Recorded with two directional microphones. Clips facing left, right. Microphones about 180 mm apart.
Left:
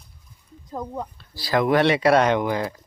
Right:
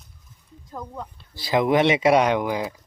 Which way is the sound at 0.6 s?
20° left (ahead or behind).